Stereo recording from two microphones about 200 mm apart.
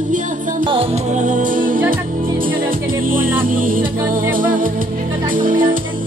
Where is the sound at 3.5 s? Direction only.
45° right (ahead or behind).